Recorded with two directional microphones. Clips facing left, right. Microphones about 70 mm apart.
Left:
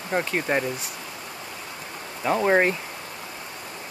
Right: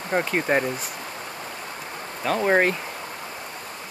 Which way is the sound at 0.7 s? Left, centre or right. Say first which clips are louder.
Right 1 dB; right.